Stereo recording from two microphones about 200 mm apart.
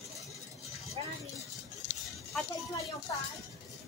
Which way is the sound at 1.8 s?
40° left (ahead or behind).